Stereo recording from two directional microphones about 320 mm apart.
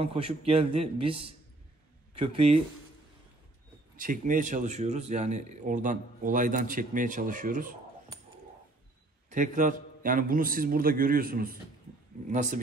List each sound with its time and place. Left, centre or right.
0.0 s a man's voice: centre
3.9 s speech: right
9.3 s speech: right